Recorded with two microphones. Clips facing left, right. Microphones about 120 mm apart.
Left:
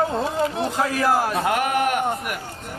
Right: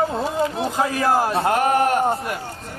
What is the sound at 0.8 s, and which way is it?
A man's voice, 20° right (ahead or behind).